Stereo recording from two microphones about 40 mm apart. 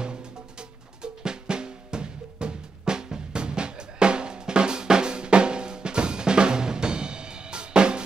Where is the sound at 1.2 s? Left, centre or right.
Right.